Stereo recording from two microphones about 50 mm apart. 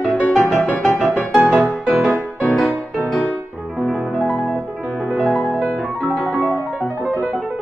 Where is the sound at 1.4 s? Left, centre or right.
Right.